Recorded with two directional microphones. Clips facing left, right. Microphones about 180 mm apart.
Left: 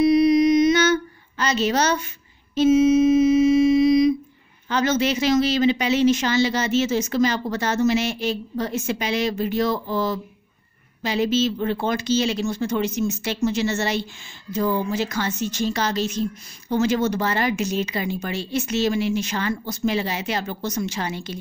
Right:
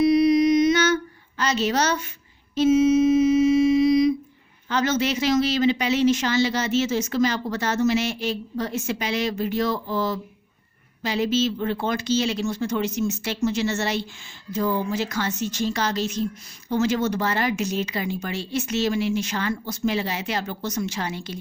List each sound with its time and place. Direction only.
0.0 s mantra: 20° left (ahead or behind)
1.4 s a woman's voice: 20° left (ahead or behind)
2.5 s humming: 20° left (ahead or behind)
4.6 s speech: 15° left (ahead or behind)